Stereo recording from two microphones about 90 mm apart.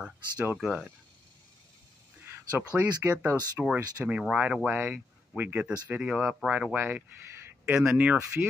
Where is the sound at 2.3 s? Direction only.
25° right (ahead or behind).